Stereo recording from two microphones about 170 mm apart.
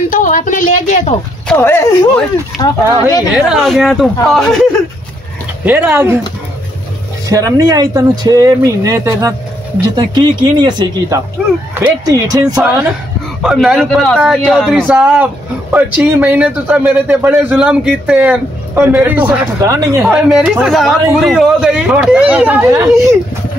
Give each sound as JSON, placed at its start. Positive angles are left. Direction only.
{"t": 0.1, "sound": "a woman's voice", "side_deg": 50}
{"t": 1.5, "sound": "speech", "side_deg": 15}
{"t": 3.3, "sound": "speech", "side_deg": -5}
{"t": 5.7, "sound": "a man's voice", "side_deg": -10}
{"t": 7.2, "sound": "speech", "side_deg": -20}
{"t": 13.4, "sound": "speech", "side_deg": -5}
{"t": 14.9, "sound": "a man's voice", "side_deg": -10}
{"t": 19.4, "sound": "speech", "side_deg": -20}
{"t": 20.0, "sound": "speech", "side_deg": -5}